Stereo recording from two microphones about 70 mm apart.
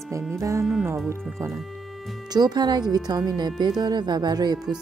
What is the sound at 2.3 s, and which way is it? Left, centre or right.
Speech, right.